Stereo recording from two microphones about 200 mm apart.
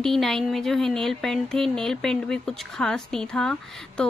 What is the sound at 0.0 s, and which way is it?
Speech, centre (ahead or behind).